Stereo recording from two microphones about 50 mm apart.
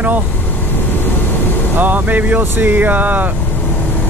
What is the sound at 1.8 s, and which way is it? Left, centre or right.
Speech, right.